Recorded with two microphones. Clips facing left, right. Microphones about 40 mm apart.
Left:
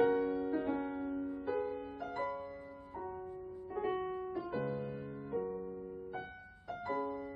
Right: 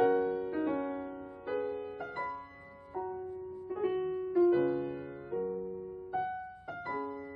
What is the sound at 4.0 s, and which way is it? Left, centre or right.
Piano, centre.